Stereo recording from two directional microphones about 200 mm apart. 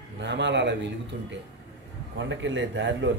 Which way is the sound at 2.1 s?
65° right (ahead or behind).